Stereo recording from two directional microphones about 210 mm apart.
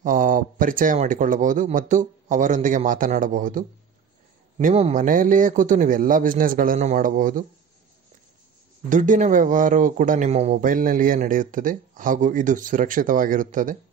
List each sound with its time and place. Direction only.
0.0 s speech: 40° right (ahead or behind)
8.8 s speech: 40° right (ahead or behind)